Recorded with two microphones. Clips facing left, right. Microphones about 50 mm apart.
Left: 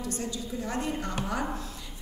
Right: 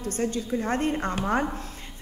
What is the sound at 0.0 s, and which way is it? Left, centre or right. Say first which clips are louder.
A woman's voice: right 6 dB; right.